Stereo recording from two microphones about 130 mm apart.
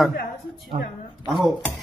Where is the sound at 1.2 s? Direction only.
Centre (ahead or behind).